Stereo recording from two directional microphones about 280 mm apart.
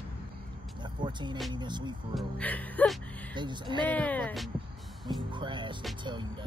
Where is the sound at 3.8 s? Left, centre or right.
Centre.